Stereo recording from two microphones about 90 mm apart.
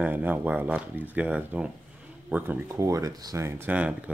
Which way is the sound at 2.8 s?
40° right (ahead or behind).